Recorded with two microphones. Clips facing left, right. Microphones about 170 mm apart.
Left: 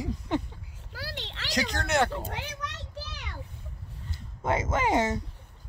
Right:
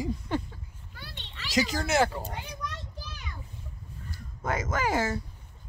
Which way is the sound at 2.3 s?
75° left (ahead or behind).